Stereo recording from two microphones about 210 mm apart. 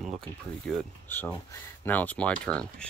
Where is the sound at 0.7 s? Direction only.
10° left (ahead or behind).